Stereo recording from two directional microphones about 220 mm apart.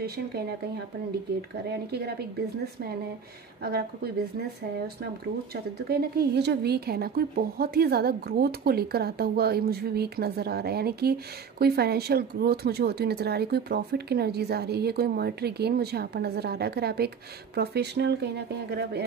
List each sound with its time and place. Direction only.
1.9 s a woman's voice: 45° right (ahead or behind)
3.6 s a woman's voice: 45° right (ahead or behind)
5.9 s a woman's voice: 45° right (ahead or behind)